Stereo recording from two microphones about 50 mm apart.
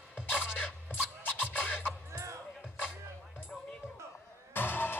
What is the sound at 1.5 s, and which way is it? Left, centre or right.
Scratching, left.